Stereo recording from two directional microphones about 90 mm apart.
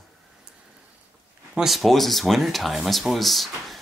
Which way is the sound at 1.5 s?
5° right (ahead or behind).